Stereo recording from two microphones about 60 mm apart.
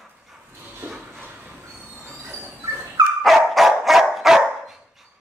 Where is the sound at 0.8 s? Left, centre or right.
Right.